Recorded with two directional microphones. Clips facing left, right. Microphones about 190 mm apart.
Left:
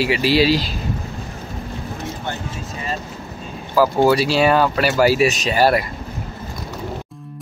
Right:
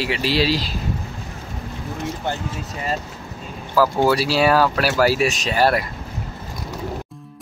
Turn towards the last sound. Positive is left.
turn(degrees=5)  # may be behind; listen again after turning